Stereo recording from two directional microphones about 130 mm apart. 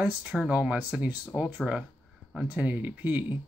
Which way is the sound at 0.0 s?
10° right (ahead or behind).